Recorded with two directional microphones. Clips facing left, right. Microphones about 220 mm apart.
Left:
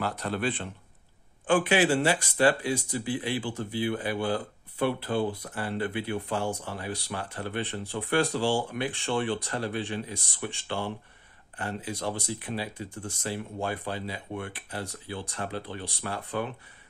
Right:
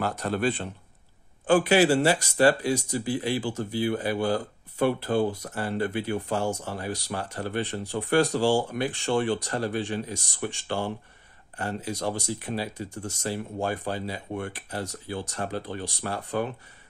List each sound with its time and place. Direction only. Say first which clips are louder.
0.0 s speech: right 3 dB; 45° right (ahead or behind)